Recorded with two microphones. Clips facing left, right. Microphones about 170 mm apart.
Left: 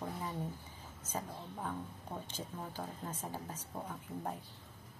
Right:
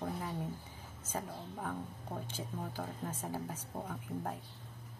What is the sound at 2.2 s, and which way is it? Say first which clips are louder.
Speech: right 2 dB; 10° right (ahead or behind).